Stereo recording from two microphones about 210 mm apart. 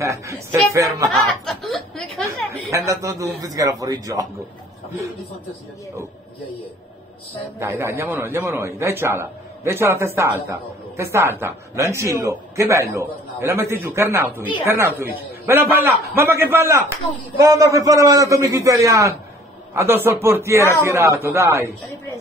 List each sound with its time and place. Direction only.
0.0 s a man's voice: 15° right (ahead or behind)
1.2 s snicker: centre (ahead or behind)
2.7 s a man's voice: 15° right (ahead or behind)
7.5 s a man's voice: 15° right (ahead or behind)